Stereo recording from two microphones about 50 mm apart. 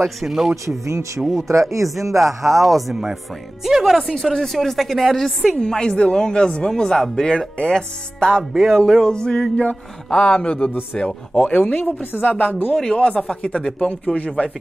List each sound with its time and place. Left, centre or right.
0.2 s speech: centre
0.7 s speech: right
2.4 s speech: centre; by 12.7 s left
12.9 s speech: left